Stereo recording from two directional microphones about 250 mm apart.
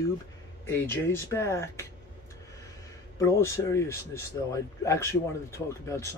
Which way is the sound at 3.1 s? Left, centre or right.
Centre.